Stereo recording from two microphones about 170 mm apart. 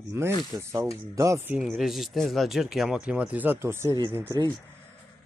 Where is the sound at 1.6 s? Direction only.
Centre (ahead or behind).